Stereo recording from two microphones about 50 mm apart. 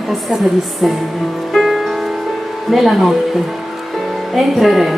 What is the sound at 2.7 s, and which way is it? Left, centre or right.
Speech, centre.